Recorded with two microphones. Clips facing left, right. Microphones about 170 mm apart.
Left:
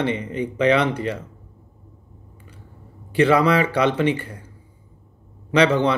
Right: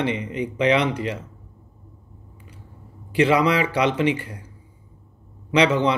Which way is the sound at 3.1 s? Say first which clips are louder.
Left 2 dB; 50° left (ahead or behind).